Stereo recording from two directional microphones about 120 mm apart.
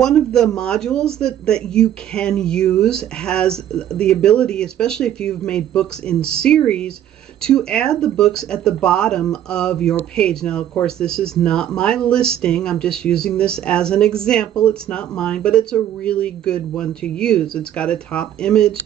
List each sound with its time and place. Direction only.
0.0 s speech: 5° left (ahead or behind)